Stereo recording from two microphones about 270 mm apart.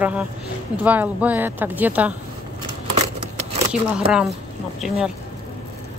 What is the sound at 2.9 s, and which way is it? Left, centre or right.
Scissors, right.